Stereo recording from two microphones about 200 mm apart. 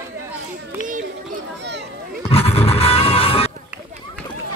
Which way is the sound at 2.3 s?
30° left (ahead or behind).